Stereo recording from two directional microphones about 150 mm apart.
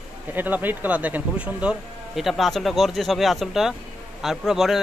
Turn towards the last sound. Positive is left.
turn(degrees=0)  # may be behind; listen again after turning